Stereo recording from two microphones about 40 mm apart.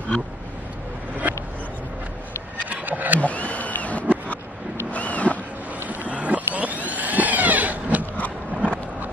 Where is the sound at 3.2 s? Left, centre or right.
Left.